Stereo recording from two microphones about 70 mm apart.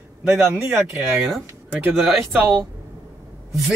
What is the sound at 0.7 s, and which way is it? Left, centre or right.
Speech, right.